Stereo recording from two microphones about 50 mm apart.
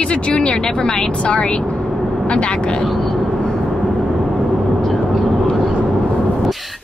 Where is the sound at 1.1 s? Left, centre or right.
Left.